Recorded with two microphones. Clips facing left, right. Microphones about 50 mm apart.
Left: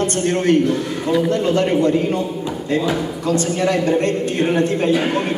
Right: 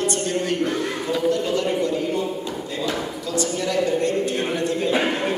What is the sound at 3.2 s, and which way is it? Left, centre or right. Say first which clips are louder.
A man's voice: left 7 dB; left.